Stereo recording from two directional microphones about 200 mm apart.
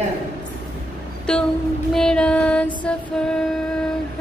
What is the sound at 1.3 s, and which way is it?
A woman's voice, 5° left (ahead or behind).